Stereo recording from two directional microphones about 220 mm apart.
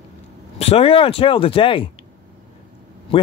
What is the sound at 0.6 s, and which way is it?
Speech, 25° left (ahead or behind).